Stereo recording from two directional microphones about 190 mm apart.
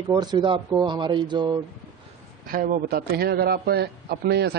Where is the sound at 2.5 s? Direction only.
45° right (ahead or behind).